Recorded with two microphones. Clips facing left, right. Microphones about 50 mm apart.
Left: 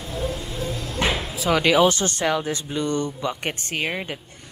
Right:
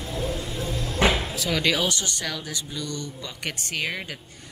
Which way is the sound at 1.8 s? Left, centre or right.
Left.